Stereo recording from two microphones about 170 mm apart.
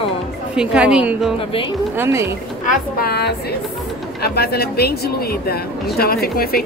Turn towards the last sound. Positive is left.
turn(degrees=65)  # may be behind; listen again after turning